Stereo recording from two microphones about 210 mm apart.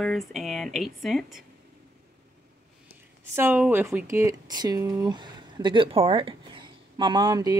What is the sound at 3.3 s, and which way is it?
Speech, 10° right (ahead or behind).